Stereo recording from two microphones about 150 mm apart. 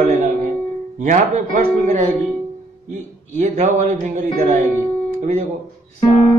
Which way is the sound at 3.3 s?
55° right (ahead or behind).